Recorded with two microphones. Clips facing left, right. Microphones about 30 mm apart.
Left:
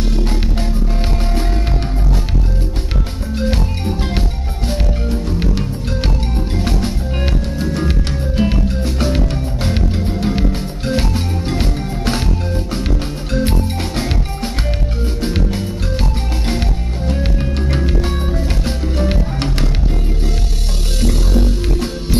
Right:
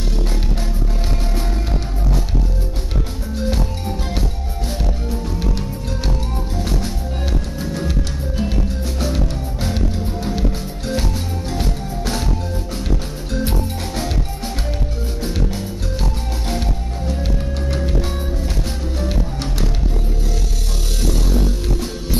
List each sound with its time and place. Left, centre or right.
3.3 s music: left
21.0 s music: left